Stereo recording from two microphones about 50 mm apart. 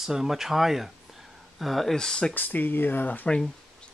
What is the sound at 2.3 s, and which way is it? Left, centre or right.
Speech, left.